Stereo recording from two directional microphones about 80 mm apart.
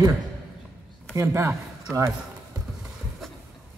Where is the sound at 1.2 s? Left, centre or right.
Right.